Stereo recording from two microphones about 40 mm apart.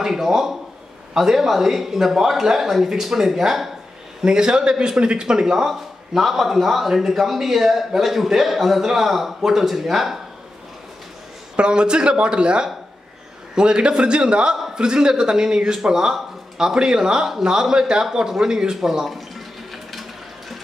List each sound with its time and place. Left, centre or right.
0.0 s speech: centre
4.2 s speech: centre
11.5 s speech: right
18.4 s a sound: centre